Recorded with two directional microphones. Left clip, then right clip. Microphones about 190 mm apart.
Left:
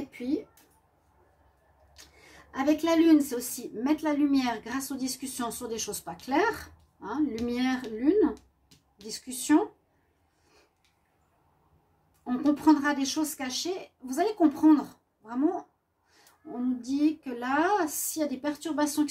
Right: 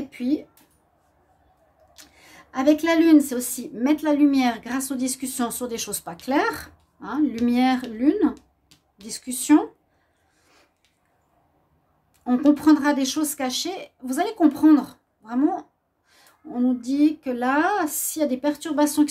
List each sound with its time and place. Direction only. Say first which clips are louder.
0.1 s speech: right 7 dB; 45° right (ahead or behind)
2.2 s a woman's voice: right 7 dB; 45° right (ahead or behind)
12.6 s a woman's voice: right 5 dB; 55° right (ahead or behind)
16.8 s a woman's voice: right 5 dB; 50° right (ahead or behind)